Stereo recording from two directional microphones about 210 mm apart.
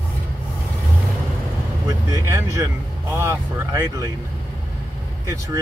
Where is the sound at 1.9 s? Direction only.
15° right (ahead or behind).